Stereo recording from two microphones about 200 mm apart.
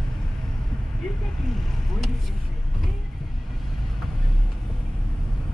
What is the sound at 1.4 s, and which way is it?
Vehicle, centre (ahead or behind).